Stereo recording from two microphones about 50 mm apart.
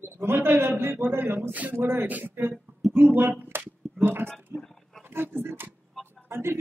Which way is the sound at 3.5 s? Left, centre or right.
Right.